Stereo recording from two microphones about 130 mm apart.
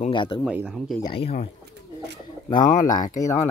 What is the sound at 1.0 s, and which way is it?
Speech, 45° left (ahead or behind).